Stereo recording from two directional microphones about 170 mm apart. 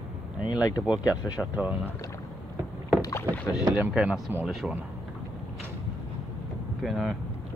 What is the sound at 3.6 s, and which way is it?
Speech, 10° right (ahead or behind).